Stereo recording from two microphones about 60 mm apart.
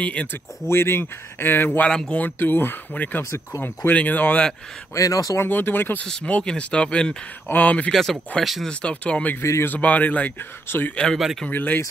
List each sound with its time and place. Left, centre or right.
0.0 s speech: left
0.3 s speech: left
1.9 s speech: centre
2.1 s speech: left
4.9 s speech: left
5.4 s speech: left
6.2 s speech: centre
7.4 s speech: left
7.9 s speech: centre
8.6 s speech: centre
9.4 s a man's voice: left
9.7 s speech: left